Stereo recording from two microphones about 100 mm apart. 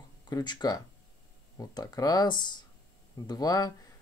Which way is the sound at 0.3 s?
45° left (ahead or behind).